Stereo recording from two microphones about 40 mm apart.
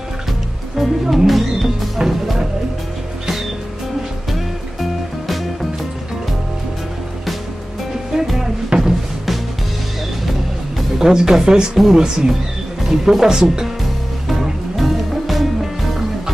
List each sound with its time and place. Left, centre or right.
0.7 s speech: centre
2.0 s music: centre
8.1 s music: centre
11.0 s speech: centre
11.7 s speech: centre
14.8 s music: centre